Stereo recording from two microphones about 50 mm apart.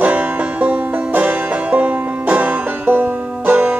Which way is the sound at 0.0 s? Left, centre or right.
Right.